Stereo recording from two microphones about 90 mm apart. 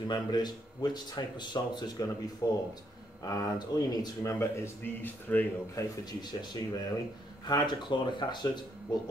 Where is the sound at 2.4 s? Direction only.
40° left (ahead or behind).